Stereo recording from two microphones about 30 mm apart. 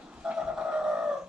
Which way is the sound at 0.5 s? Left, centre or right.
Right.